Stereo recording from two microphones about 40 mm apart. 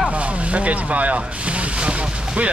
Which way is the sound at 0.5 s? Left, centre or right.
Right.